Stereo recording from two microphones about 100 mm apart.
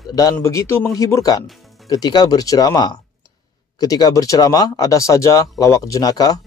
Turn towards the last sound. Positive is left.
turn(degrees=40)  # may be behind; listen again after turning